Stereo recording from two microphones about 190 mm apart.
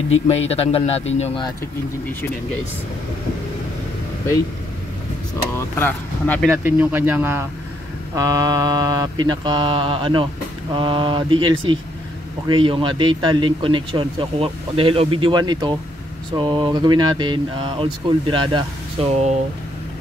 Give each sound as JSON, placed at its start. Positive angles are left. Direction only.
{"t": 0.5, "sound": "a man's voice", "side_deg": 30}
{"t": 5.6, "sound": "speech", "side_deg": 10}
{"t": 6.5, "sound": "speech", "side_deg": -10}